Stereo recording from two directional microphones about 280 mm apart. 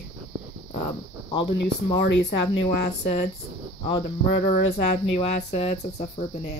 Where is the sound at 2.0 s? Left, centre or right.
Left.